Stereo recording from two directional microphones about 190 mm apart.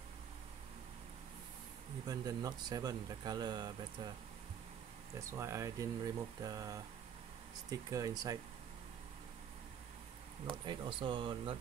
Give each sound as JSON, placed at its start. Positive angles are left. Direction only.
{"t": 2.0, "sound": "speech", "side_deg": -20}
{"t": 5.3, "sound": "speech", "side_deg": -15}
{"t": 10.6, "sound": "speech", "side_deg": -25}